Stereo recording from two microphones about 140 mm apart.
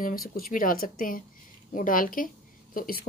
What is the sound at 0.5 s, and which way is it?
Speech, 85° left.